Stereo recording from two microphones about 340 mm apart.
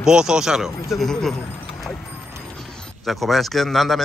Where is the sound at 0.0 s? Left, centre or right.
Centre.